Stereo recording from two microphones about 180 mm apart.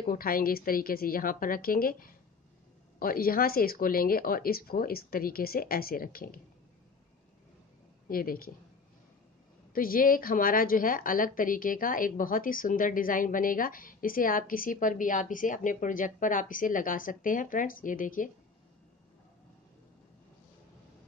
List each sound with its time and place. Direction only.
0.0 s a woman's voice: 55° left (ahead or behind)
8.1 s a woman's voice: 55° left (ahead or behind)
9.7 s a woman's voice: 55° left (ahead or behind)